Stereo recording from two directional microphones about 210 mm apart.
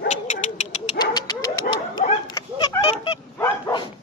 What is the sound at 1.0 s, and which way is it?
Dog, 20° left (ahead or behind).